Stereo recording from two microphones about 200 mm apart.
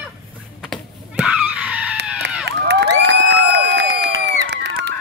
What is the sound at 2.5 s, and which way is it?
Crowd, 60° right (ahead or behind).